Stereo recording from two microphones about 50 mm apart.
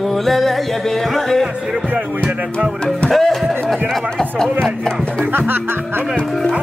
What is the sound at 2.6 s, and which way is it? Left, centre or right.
Music, centre.